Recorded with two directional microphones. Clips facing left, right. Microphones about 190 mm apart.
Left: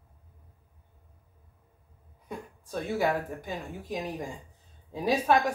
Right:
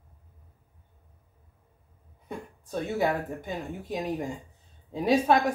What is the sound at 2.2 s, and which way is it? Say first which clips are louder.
Speech: right 1 dB; 20° right (ahead or behind).